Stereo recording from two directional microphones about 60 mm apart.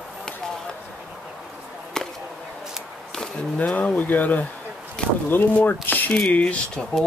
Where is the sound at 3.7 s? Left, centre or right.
Left.